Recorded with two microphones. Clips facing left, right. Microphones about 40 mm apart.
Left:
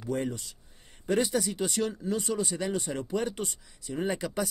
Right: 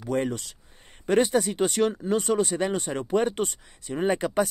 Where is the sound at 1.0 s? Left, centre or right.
Right.